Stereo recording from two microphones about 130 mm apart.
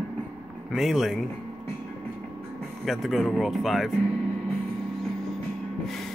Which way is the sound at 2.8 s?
Centre (ahead or behind).